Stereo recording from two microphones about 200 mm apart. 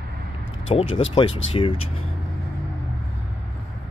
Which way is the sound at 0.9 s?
75° left (ahead or behind).